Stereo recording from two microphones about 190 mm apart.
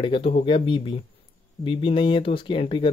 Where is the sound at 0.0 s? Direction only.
30° left (ahead or behind).